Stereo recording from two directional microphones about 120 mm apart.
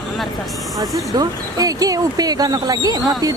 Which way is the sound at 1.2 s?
30° right (ahead or behind).